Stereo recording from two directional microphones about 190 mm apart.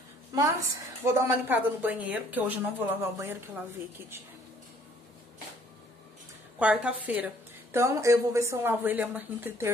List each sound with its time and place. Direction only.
0.3 s a woman's voice: 20° right (ahead or behind)
6.6 s speech: 5° right (ahead or behind)